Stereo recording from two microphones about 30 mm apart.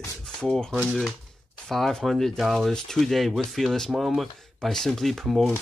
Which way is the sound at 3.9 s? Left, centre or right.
Centre.